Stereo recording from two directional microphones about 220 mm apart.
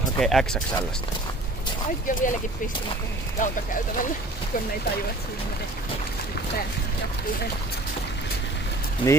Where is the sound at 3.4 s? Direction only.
35° left (ahead or behind).